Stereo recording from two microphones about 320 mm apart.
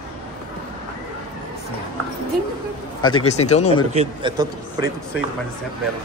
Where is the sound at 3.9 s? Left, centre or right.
Centre.